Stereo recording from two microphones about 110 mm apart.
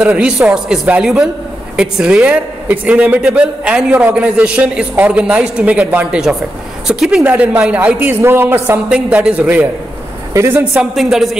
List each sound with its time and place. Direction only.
0.0 s a man's voice: 10° right (ahead or behind)
8.8 s a man's voice: 5° right (ahead or behind)
10.3 s a woman's voice: 25° right (ahead or behind)
10.6 s speech: 5° right (ahead or behind)